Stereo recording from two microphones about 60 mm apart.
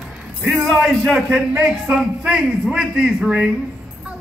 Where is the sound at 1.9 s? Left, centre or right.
Centre.